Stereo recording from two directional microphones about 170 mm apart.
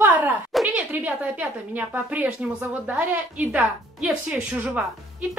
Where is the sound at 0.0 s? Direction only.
10° right (ahead or behind).